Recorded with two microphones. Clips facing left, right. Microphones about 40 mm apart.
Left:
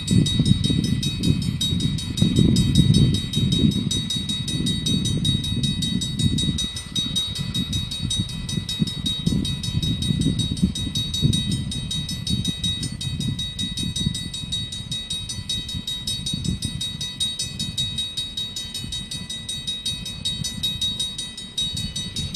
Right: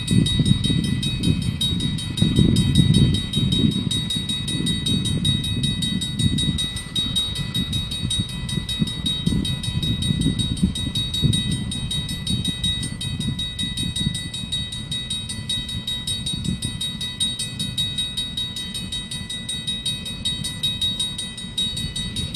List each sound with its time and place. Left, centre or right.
0.1 s train: right
7.0 s train: right
20.2 s train: right